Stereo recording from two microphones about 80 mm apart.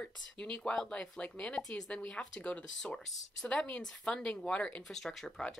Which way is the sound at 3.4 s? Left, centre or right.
Centre.